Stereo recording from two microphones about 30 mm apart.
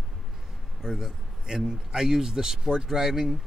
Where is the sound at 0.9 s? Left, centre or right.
Centre.